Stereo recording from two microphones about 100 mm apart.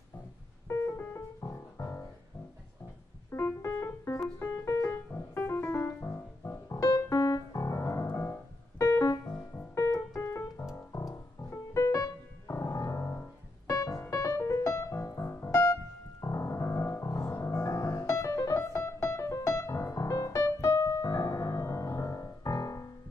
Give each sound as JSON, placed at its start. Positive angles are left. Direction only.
{"t": 0.7, "sound": "music", "side_deg": 25}
{"t": 3.3, "sound": "keyboard", "side_deg": 25}
{"t": 4.4, "sound": "music", "side_deg": 30}
{"t": 6.8, "sound": "piano", "side_deg": 35}
{"t": 10.9, "sound": "music", "side_deg": 30}